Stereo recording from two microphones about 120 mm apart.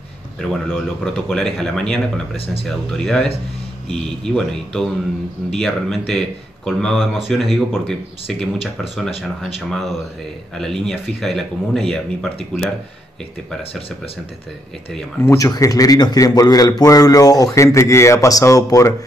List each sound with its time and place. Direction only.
0.8 s speech: 5° left (ahead or behind)
2.3 s speech: 55° left (ahead or behind)
2.6 s speech: 5° left (ahead or behind)
15.1 s a man's voice: 25° left (ahead or behind)